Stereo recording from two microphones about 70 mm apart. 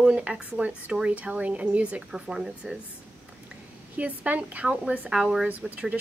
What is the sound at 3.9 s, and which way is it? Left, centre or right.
A woman's voice, right.